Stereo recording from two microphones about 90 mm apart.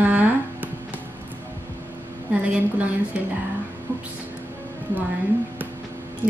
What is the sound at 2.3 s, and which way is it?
Speech, 15° right (ahead or behind).